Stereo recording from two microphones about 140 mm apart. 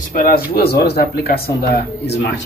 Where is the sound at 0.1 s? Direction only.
90° left.